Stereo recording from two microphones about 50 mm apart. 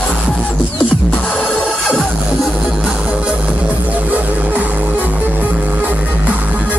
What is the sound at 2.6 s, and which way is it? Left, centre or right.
Music, centre.